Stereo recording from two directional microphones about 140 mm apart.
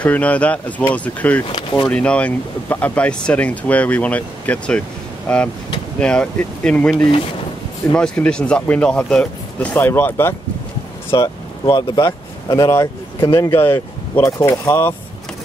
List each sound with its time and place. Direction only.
0.0 s speech: 10° left (ahead or behind)
5.9 s speech: 5° left (ahead or behind)
11.1 s speech: 25° left (ahead or behind)